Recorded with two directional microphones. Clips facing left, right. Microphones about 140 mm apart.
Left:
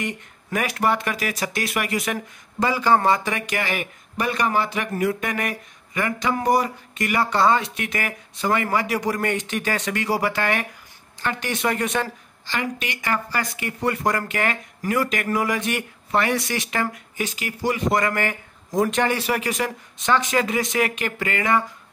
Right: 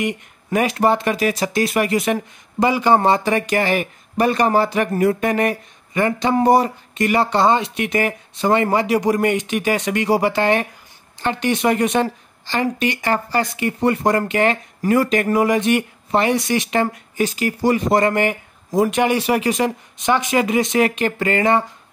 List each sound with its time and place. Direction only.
0.0 s speech: 25° right (ahead or behind)
12.4 s speech: 35° right (ahead or behind)
17.2 s speech: 40° right (ahead or behind)
18.0 s speech: 20° right (ahead or behind)
18.7 s speech: 10° right (ahead or behind); by 21.6 s 30° right (ahead or behind)